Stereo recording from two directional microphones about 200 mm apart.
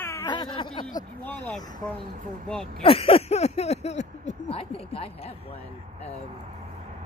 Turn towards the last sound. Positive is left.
turn(degrees=30)  # may be behind; listen again after turning